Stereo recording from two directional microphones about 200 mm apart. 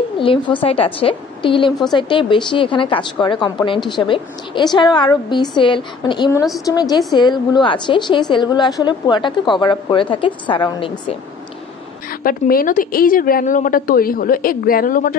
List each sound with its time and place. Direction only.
0.2 s a woman's voice: 25° left (ahead or behind)
12.2 s a woman's voice: 45° left (ahead or behind)